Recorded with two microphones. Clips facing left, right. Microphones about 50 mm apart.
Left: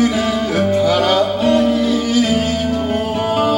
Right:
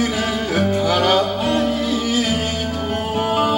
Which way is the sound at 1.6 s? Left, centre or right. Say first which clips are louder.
Left 4 dB; centre.